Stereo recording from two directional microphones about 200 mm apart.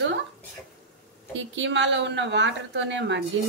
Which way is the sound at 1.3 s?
65° right (ahead or behind).